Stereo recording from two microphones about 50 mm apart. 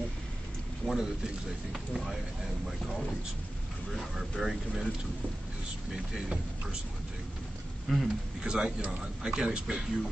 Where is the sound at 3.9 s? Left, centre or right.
Centre.